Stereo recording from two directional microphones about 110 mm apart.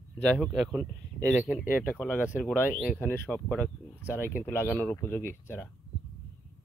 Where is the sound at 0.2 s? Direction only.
Centre (ahead or behind).